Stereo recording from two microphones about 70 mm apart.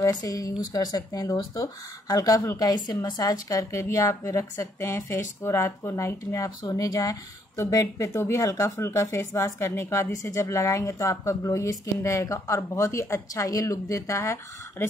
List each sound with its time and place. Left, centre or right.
0.0 s speech: left
2.6 s a woman's voice: left